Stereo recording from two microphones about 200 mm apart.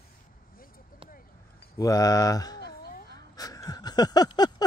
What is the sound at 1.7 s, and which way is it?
Speech, 15° left (ahead or behind).